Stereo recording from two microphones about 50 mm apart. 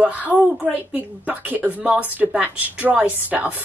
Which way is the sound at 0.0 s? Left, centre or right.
Right.